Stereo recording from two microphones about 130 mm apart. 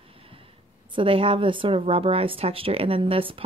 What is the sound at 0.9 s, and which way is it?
Speech, 45° right (ahead or behind).